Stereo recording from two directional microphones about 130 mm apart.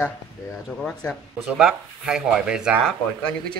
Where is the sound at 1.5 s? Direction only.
5° right (ahead or behind).